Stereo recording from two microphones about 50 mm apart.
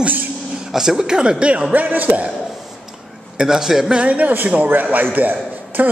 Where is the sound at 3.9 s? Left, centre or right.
Right.